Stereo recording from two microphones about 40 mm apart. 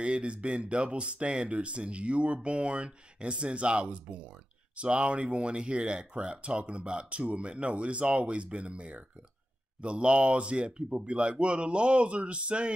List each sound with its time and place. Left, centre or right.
0.0 s speech: right